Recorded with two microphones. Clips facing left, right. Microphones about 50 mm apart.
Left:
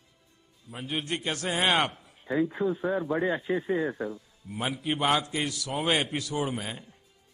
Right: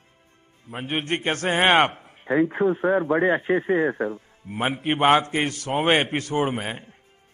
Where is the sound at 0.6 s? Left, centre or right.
Right.